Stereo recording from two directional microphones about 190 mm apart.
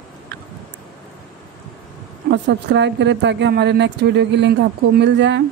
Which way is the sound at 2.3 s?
65° right (ahead or behind).